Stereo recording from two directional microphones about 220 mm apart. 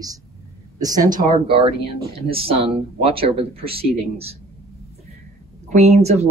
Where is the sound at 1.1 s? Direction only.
35° right (ahead or behind).